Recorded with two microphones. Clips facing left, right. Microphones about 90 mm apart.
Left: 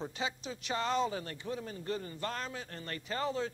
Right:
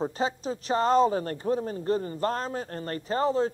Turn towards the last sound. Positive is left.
turn(degrees=-40)  # may be behind; listen again after turning